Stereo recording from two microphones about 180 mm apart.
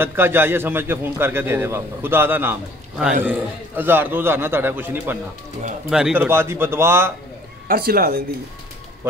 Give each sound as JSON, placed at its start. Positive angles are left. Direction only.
{"t": 0.0, "sound": "a man's voice", "side_deg": -10}
{"t": 7.6, "sound": "speech", "side_deg": -55}